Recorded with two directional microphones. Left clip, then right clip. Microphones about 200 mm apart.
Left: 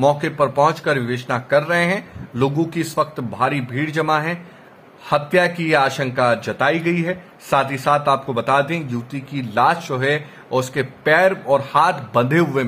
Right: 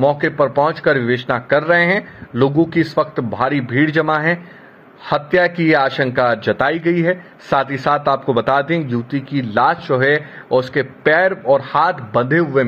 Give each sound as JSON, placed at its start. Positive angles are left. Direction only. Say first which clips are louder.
{"t": 0.0, "sound": "a man's voice", "louder": "right 2 dB", "side_deg": -15}